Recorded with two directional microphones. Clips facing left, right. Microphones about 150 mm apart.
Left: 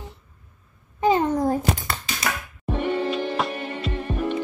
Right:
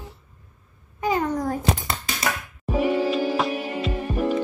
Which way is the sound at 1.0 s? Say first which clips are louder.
Left 4 dB; 25° left (ahead or behind).